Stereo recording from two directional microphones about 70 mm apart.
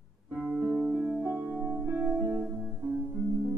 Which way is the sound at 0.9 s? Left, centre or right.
Right.